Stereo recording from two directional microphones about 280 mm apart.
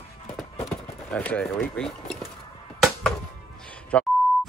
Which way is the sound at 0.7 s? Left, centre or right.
Centre.